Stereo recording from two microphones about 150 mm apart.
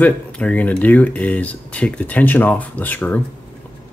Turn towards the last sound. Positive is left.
turn(degrees=10)  # may be behind; listen again after turning